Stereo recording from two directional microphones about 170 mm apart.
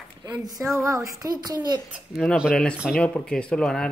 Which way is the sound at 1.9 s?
Centre (ahead or behind).